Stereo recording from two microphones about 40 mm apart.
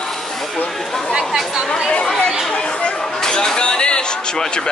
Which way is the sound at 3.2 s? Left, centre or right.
Centre.